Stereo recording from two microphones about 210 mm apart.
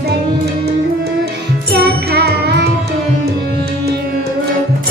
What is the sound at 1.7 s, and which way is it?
Music, 50° right (ahead or behind).